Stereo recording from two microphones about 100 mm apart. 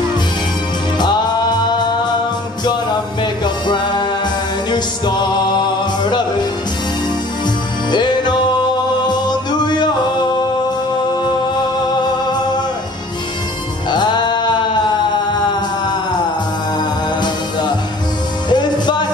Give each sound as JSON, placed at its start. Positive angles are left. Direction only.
{"t": 0.9, "sound": "music", "side_deg": 45}
{"t": 3.4, "sound": "music", "side_deg": 50}
{"t": 7.9, "sound": "music", "side_deg": 50}
{"t": 13.8, "sound": "music", "side_deg": 45}
{"t": 18.5, "sound": "music", "side_deg": 45}